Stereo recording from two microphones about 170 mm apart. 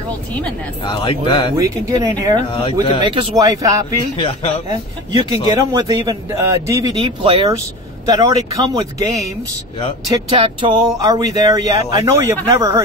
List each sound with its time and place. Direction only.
0.8 s speech: 25° left (ahead or behind)
1.6 s a man's voice: 20° right (ahead or behind)
2.5 s speech: 30° left (ahead or behind)
3.0 s a man's voice: 25° right (ahead or behind)
4.2 s speech: 35° left (ahead or behind)
4.6 s a man's voice: 20° right (ahead or behind)
7.0 s a man's voice: 35° right (ahead or behind)
10.0 s a man's voice: 20° right (ahead or behind)